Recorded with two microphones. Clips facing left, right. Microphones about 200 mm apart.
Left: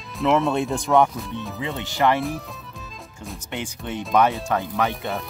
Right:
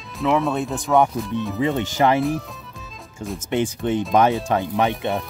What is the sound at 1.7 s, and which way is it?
Speech, 45° right (ahead or behind).